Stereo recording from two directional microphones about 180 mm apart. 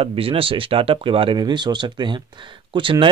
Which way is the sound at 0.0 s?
30° right (ahead or behind).